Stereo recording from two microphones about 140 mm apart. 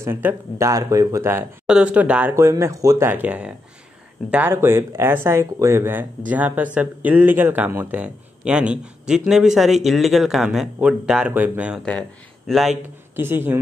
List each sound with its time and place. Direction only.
0.0 s speech: 15° right (ahead or behind)
1.7 s speech: 10° right (ahead or behind)
12.4 s a man's voice: centre (ahead or behind)
13.1 s speech: 15° right (ahead or behind)